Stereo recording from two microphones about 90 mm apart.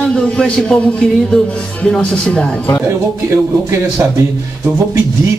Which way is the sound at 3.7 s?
35° right (ahead or behind).